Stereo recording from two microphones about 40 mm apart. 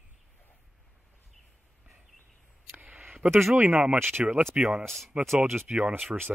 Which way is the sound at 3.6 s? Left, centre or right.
Right.